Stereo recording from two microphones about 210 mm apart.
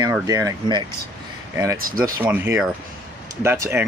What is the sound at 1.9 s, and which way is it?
Speech, 40° right (ahead or behind).